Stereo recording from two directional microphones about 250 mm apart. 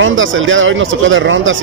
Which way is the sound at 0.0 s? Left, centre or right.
Right.